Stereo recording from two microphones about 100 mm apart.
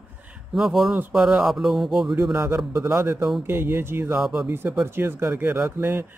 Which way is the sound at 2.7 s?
30° right (ahead or behind).